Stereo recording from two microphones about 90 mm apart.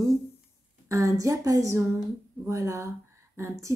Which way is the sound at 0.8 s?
40° right (ahead or behind).